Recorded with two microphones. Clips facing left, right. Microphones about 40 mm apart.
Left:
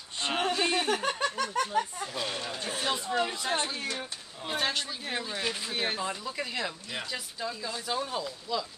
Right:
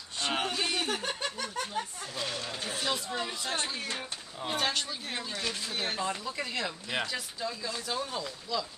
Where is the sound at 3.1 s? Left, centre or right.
Left.